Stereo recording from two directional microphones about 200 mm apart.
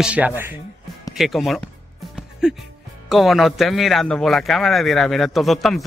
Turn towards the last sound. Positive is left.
turn(degrees=0)  # may be behind; listen again after turning